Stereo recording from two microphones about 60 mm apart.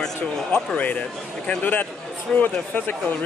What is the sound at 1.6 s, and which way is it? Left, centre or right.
Speech, left.